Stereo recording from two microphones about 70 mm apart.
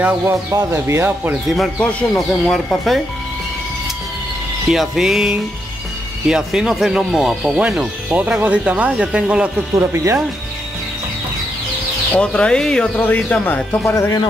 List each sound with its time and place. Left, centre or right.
0.2 s speech: right
1.8 s speech: centre
2.1 s speech: centre
4.6 s speech: centre
8.2 s speech: right
9.8 s speech: right
12.2 s speech: centre
13.0 s speech: left
13.7 s speech: left